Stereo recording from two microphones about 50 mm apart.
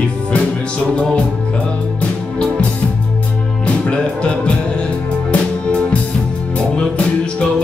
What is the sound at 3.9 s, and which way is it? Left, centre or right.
Music, centre.